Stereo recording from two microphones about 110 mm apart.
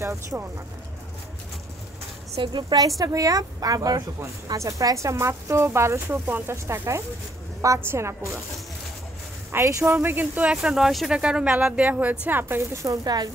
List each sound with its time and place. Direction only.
0.0 s speech: 25° right (ahead or behind)
2.3 s a woman's voice: 45° right (ahead or behind)
3.0 s speech: 30° right (ahead or behind)
9.5 s speech: 25° right (ahead or behind)